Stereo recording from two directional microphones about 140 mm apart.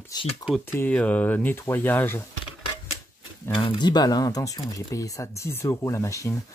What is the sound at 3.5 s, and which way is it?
Speech, 35° left (ahead or behind).